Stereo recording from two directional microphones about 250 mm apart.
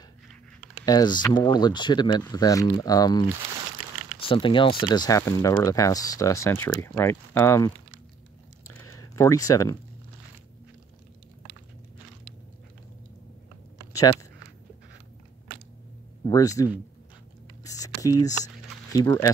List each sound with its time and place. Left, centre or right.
0.8 s speech: centre
8.7 s computer keyboard: centre
16.3 s speech: centre
17.6 s a sound: centre